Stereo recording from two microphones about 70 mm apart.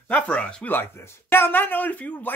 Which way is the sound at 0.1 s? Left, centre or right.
Centre.